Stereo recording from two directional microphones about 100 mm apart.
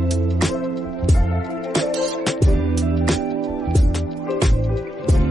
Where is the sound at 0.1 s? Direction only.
Centre (ahead or behind).